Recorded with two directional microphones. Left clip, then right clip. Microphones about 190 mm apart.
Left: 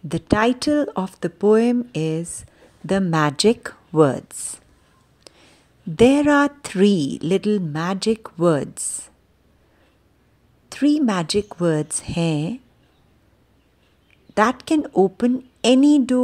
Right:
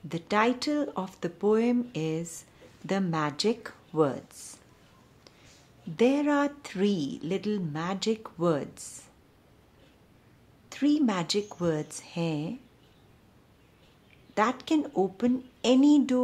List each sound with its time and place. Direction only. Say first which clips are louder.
0.1 s a woman's voice: left 7 dB; 40° left (ahead or behind)
5.3 s a sound: left 10 dB; 40° left (ahead or behind)
5.9 s a woman's voice: left 10 dB; 40° left (ahead or behind)
10.7 s a woman's voice: left 7 dB; 35° left (ahead or behind)
14.3 s a woman's voice: left 8 dB; 35° left (ahead or behind)